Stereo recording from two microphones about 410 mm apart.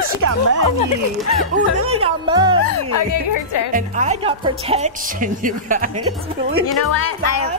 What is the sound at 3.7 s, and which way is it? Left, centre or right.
Speech, centre.